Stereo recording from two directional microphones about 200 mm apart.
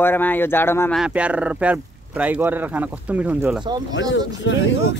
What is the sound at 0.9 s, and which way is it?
Speech, 5° right (ahead or behind).